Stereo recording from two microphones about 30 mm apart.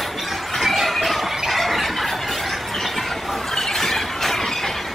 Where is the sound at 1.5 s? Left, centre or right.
Centre.